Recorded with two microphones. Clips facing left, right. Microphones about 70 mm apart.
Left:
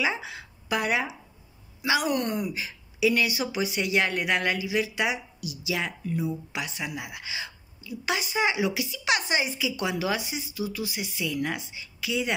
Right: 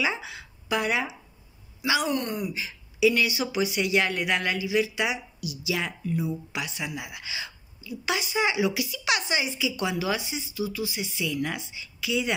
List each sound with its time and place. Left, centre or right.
0.0 s a woman's voice: left
2.5 s a woman's voice: left
11.4 s speech: left